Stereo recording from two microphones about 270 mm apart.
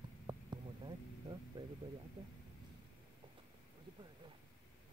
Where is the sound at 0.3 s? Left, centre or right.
Centre.